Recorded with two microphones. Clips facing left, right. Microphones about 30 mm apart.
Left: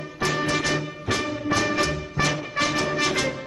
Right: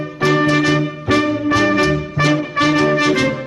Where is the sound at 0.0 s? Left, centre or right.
Right.